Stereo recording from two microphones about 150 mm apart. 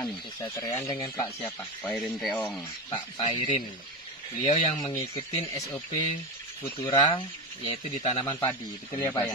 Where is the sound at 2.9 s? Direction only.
35° left (ahead or behind).